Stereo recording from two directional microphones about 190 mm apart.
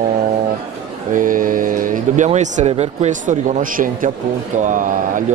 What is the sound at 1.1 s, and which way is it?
A man's voice, 45° right (ahead or behind).